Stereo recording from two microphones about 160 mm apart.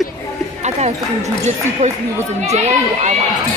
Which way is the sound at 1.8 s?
45° right (ahead or behind).